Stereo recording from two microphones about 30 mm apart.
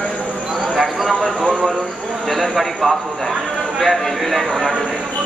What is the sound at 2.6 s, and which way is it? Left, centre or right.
Speech, centre.